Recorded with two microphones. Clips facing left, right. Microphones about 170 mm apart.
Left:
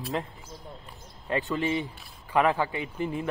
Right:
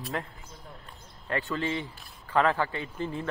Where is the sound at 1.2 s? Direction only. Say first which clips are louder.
Left 3 dB; 20° left (ahead or behind).